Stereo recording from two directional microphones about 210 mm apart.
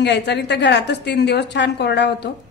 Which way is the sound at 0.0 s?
55° left (ahead or behind).